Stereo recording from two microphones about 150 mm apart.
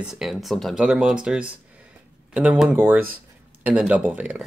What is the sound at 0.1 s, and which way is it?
A man's voice, centre (ahead or behind).